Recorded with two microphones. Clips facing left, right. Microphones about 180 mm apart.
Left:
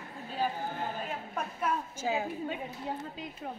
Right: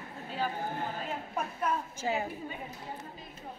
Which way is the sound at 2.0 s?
5° left (ahead or behind).